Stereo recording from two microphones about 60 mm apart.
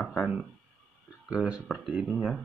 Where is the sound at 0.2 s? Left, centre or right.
Centre.